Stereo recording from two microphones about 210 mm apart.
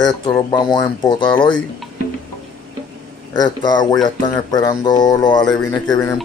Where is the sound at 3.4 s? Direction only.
20° left (ahead or behind).